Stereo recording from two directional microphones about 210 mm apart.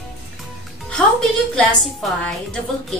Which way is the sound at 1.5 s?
Centre (ahead or behind).